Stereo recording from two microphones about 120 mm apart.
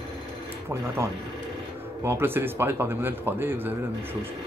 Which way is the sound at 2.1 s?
20° right (ahead or behind).